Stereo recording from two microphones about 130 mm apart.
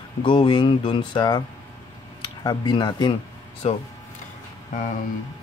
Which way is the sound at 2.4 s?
35° left (ahead or behind).